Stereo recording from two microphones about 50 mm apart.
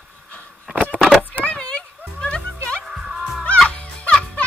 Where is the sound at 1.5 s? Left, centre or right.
Centre.